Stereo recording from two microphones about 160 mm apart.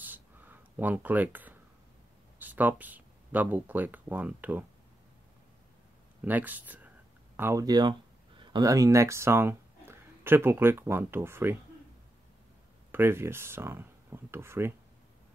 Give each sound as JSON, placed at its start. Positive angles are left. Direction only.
{"t": 0.0, "sound": "a sound", "side_deg": -10}
{"t": 2.3, "sound": "speech", "side_deg": -10}
{"t": 6.2, "sound": "speech", "side_deg": -10}
{"t": 12.9, "sound": "speech", "side_deg": -15}